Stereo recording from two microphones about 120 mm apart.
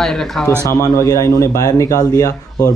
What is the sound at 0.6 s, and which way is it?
Speech, 25° left (ahead or behind).